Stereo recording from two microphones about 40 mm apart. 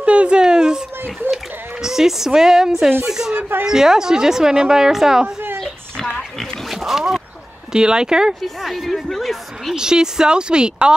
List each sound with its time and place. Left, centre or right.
0.0 s a sound: right
1.3 s a woman's voice: centre
3.3 s speech: right
3.6 s a woman's voice: centre
5.6 s oink: centre
6.7 s a sound: centre
7.7 s speech: centre
8.4 s a woman's voice: centre
9.8 s speech: centre